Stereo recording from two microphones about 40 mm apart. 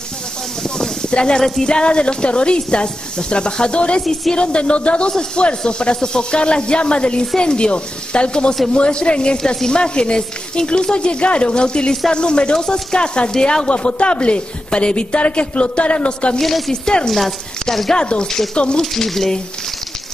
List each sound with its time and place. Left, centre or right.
0.7 s a sound: left
1.4 s speech: centre
13.7 s speech: left
16.3 s speech: centre
16.8 s speech: centre
17.1 s speech: centre
17.9 s speech: left
18.8 s speech: centre